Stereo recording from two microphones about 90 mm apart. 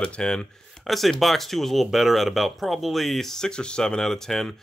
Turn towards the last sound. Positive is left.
turn(degrees=5)  # may be behind; listen again after turning